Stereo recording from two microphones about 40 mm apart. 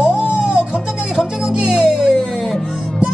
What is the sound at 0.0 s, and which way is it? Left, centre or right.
Music, right.